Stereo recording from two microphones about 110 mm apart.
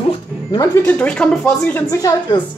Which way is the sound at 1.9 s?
30° left (ahead or behind).